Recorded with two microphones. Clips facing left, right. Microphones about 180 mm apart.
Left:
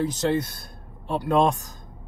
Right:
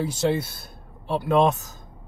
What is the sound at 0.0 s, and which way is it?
Speech, 10° right (ahead or behind).